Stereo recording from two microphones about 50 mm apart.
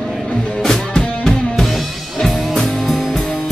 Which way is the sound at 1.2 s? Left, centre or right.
Centre.